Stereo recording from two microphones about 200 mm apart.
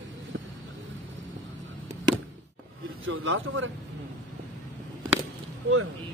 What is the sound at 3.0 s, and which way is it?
Speech, 75° right (ahead or behind).